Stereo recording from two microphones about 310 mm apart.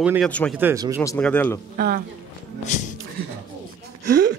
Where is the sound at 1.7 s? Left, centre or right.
Right.